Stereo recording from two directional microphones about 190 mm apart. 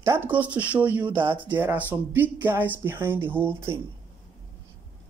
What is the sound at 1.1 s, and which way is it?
Speech, 25° right (ahead or behind).